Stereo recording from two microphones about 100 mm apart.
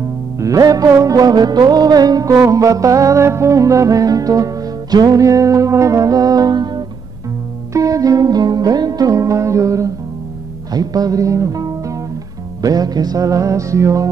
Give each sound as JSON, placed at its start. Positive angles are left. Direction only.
{"t": 0.4, "sound": "music", "side_deg": -35}